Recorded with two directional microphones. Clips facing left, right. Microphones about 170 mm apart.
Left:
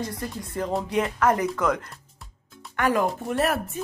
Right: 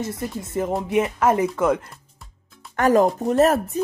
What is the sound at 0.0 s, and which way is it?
Speech, 25° right (ahead or behind).